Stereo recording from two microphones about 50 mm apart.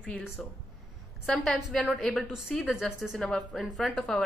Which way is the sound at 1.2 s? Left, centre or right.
Centre.